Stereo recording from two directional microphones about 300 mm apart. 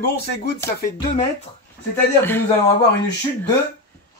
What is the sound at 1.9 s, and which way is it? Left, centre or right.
Speech, centre.